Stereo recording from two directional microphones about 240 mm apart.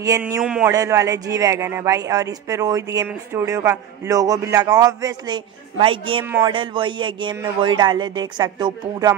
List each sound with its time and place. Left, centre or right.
0.0 s speech: centre
0.4 s speech: centre